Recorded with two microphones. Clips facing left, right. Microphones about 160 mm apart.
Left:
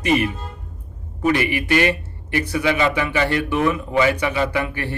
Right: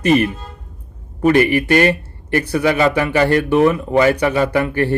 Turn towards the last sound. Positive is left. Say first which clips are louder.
# right 6 dB
turn(degrees=-35)  # may be behind; listen again after turning